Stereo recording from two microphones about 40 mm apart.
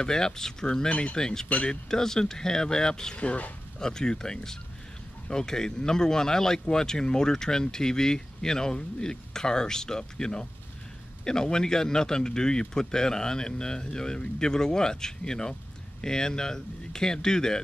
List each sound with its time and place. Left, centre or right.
0.0 s speech: centre
0.8 s speech: left
1.1 s speech: centre
3.2 s speech: left
3.8 s speech: centre